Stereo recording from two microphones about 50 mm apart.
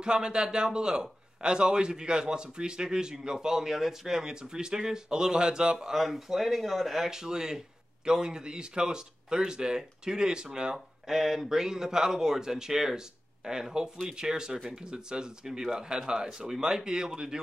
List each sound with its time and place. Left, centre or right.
0.0 s a man's voice: centre